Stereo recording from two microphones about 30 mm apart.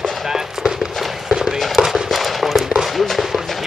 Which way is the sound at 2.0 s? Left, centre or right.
Centre.